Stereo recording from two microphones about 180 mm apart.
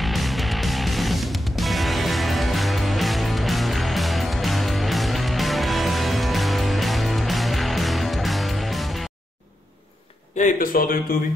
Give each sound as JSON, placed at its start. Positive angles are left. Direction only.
{"t": 0.0, "sound": "music", "side_deg": 0}
{"t": 10.3, "sound": "speech", "side_deg": 45}